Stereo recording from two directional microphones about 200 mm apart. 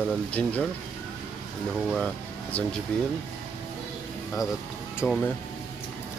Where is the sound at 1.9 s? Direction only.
5° left (ahead or behind).